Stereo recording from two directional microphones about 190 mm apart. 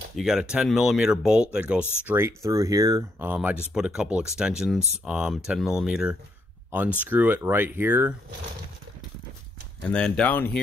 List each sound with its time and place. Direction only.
0.1 s speech: 5° right (ahead or behind)
1.8 s speech: 10° left (ahead or behind)
2.0 s speech: 15° right (ahead or behind)
9.8 s speech: 5° left (ahead or behind)